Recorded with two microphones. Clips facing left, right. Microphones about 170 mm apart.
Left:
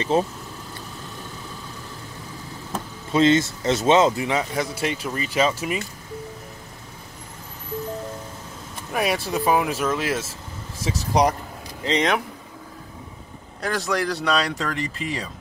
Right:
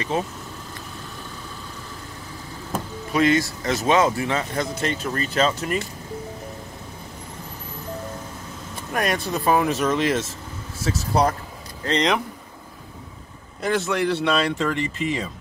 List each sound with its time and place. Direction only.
0.1 s speech: 30° left (ahead or behind)
3.1 s speech: 25° left (ahead or behind); by 5.8 s 10° left (ahead or behind)
8.9 s speech: 5° left (ahead or behind)
13.6 s speech: centre (ahead or behind)